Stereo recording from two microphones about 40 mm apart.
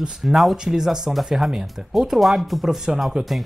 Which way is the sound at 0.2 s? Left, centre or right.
Centre.